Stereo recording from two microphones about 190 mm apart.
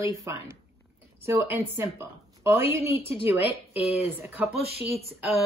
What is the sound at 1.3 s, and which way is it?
Speech, 15° right (ahead or behind).